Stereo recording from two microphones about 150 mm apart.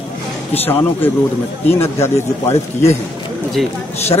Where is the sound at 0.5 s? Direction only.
15° left (ahead or behind).